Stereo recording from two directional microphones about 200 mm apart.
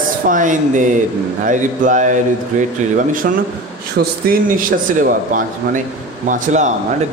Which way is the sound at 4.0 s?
45° right (ahead or behind).